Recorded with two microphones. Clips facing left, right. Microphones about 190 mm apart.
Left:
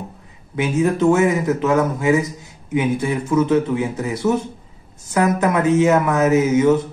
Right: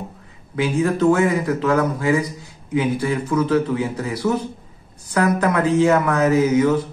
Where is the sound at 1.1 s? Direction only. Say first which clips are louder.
Left 2 dB; 20° left (ahead or behind).